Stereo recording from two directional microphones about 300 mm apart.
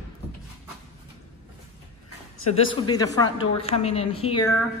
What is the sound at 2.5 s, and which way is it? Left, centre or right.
A woman's voice, centre.